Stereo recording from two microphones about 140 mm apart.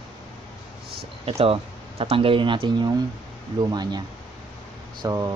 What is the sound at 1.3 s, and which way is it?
Speech, 45° right (ahead or behind).